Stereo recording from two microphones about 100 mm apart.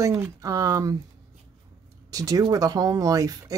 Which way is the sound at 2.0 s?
35° right (ahead or behind).